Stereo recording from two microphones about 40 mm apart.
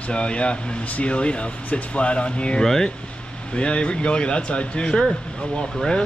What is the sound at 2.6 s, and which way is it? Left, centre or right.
Speech, centre.